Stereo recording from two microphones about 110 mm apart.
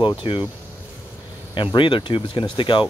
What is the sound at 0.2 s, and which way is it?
Speech, 50° left (ahead or behind).